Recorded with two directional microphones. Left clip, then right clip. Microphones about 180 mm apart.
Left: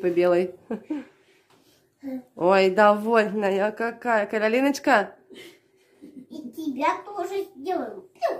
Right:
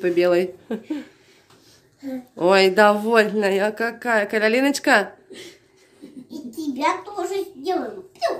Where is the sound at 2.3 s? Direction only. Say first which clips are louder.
Right 3 dB; 5° left (ahead or behind).